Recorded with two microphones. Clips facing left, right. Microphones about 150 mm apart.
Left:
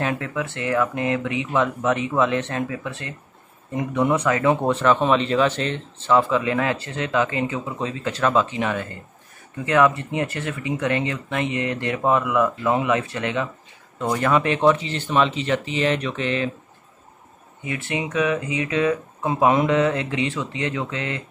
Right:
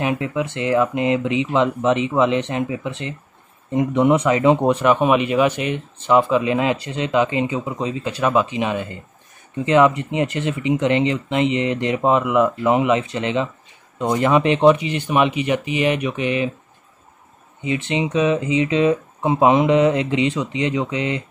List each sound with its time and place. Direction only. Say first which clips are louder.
0.0 s speech: right 4 dB; 15° right (ahead or behind)
17.6 s speech: right 5 dB; 20° right (ahead or behind)